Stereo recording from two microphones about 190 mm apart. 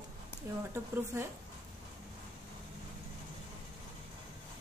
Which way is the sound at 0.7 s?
15° right (ahead or behind).